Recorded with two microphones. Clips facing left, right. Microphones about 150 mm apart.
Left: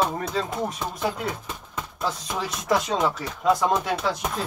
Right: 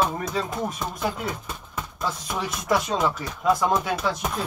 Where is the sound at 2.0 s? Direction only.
25° left (ahead or behind).